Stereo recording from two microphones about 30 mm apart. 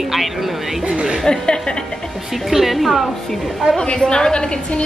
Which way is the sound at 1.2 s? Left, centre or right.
Centre.